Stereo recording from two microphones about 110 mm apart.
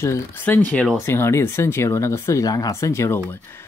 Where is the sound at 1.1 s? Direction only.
25° left (ahead or behind).